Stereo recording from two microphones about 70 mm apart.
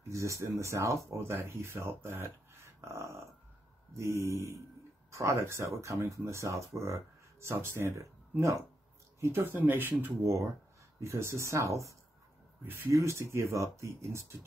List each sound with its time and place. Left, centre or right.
0.1 s speech: right
10.2 s speech: right